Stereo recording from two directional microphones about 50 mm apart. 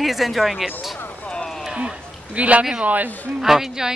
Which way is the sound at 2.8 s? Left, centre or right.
Right.